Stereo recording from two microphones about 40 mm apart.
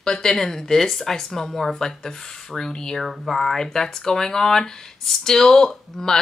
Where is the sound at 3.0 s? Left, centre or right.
Centre.